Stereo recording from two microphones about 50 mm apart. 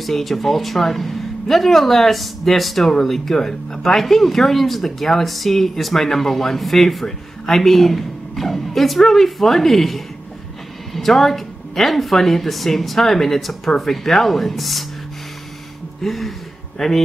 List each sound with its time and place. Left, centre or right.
0.0 s speech: centre
16.0 s speech: centre